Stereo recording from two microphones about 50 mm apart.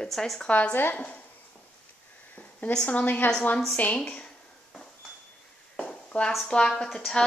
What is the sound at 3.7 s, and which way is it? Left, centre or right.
Speech, left.